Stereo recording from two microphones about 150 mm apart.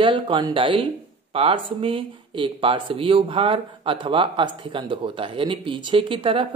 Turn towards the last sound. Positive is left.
turn(degrees=-35)  # may be behind; listen again after turning